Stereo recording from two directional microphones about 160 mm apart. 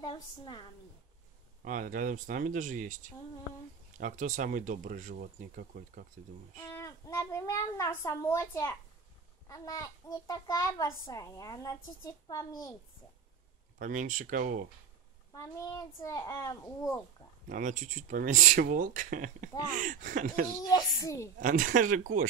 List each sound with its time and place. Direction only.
0.0 s a child's voice: 30° left (ahead or behind)
1.6 s speech: 55° right (ahead or behind)
6.7 s a child's voice: 20° left (ahead or behind)
13.7 s speech: 55° right (ahead or behind)
15.3 s a child's voice: 20° left (ahead or behind)
17.5 s speech: 55° right (ahead or behind)
20.7 s a child's voice: 20° left (ahead or behind)
21.4 s speech: 55° right (ahead or behind)